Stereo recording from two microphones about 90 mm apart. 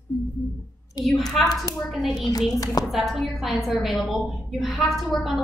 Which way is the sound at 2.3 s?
40° left (ahead or behind).